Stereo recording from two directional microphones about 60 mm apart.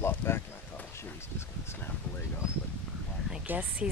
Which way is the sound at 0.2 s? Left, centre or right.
Left.